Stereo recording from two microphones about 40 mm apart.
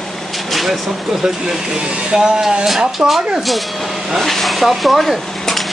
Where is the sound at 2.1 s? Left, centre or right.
Centre.